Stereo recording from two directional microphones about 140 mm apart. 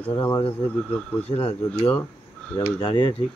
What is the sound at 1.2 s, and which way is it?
Speech, 40° left (ahead or behind).